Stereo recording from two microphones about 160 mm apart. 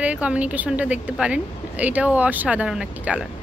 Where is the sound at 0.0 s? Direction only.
10° right (ahead or behind).